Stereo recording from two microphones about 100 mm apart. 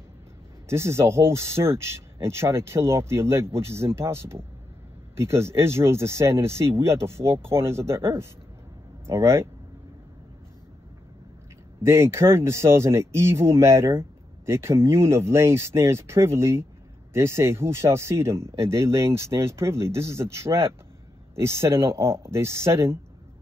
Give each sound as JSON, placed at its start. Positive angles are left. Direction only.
{"t": 0.7, "sound": "speech", "side_deg": -25}
{"t": 11.8, "sound": "speech", "side_deg": -25}